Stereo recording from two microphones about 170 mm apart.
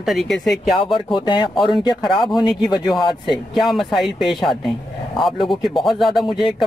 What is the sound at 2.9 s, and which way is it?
Speech, centre (ahead or behind).